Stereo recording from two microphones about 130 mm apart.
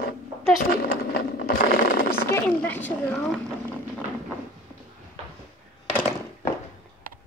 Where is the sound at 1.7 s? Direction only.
90° left.